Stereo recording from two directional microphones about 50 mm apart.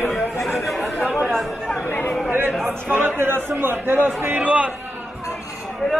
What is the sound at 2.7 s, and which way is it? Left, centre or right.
A man's voice, right.